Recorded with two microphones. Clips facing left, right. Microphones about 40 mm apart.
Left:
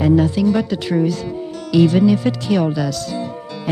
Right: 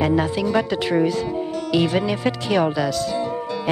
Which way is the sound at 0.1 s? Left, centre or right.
Centre.